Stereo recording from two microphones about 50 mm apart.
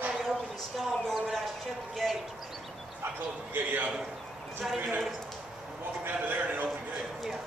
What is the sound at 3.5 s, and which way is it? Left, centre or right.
Speech, right.